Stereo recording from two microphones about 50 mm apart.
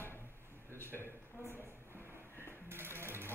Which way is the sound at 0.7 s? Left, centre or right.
Left.